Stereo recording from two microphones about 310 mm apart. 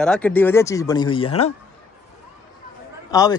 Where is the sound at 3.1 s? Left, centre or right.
Centre.